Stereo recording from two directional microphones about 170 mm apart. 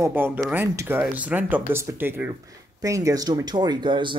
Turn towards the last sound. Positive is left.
turn(degrees=-25)  # may be behind; listen again after turning